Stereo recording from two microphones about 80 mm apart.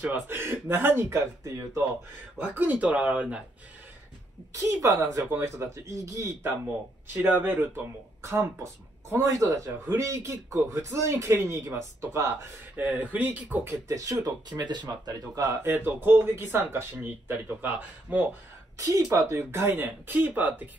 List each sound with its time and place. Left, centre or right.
0.0 s speech: right
4.6 s speech: right
7.2 s speech: right
13.8 s speech: right
15.4 s speech: right
19.1 s speech: right